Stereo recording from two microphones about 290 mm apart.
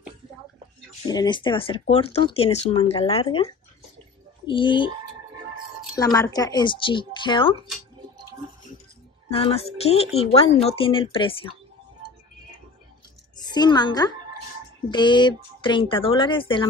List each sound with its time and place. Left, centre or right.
1.0 s a woman's voice: centre
5.9 s a woman's voice: centre
9.3 s speech: centre
13.4 s a woman's voice: centre